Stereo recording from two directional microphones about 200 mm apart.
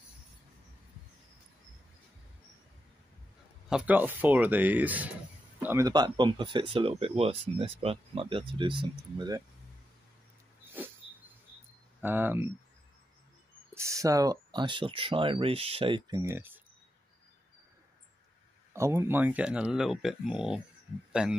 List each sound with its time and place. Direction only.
3.6 s speech: 5° right (ahead or behind); by 9.4 s 20° right (ahead or behind)
12.0 s speech: 10° right (ahead or behind)
13.7 s speech: 15° right (ahead or behind)
18.7 s speech: 15° right (ahead or behind)